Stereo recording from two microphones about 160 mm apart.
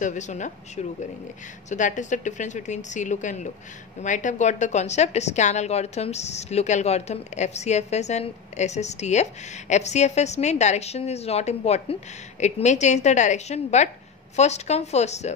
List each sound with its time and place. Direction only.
0.0 s a woman's voice: 50° left (ahead or behind)